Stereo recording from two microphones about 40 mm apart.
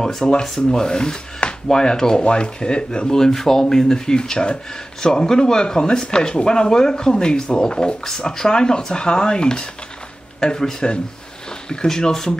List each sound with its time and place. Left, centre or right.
0.0 s rub: centre
5.0 s speech: centre
8.1 s rub: centre